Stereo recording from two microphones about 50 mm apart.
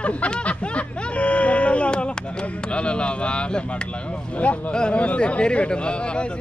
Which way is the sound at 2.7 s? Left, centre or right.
Left.